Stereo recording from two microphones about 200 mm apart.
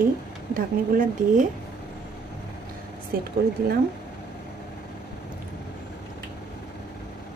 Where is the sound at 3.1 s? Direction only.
50° right (ahead or behind).